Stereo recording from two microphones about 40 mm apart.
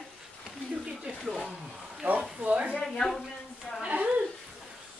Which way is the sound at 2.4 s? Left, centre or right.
Right.